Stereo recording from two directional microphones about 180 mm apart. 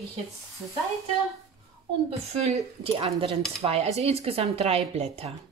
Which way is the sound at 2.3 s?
35° right (ahead or behind).